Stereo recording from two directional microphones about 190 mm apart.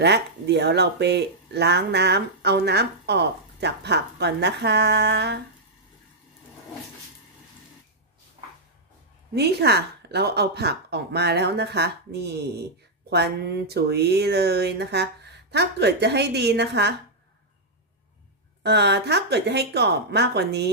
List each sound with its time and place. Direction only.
0.0 s speech: 60° right (ahead or behind)
9.3 s speech: 60° right (ahead or behind)
18.6 s speech: 60° right (ahead or behind)